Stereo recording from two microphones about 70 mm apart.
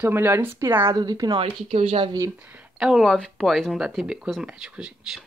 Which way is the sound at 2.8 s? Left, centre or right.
Centre.